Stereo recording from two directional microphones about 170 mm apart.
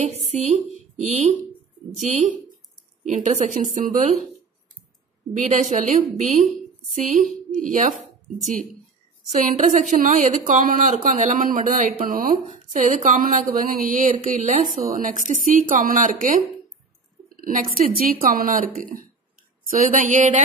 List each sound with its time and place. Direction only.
0.3 s a woman's voice: 45° right (ahead or behind)
5.3 s a woman's voice: 45° right (ahead or behind)
9.3 s a woman's voice: 45° right (ahead or behind)
12.7 s a woman's voice: 45° right (ahead or behind)